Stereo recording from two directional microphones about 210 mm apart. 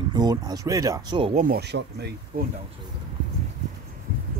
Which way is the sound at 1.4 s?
50° right (ahead or behind).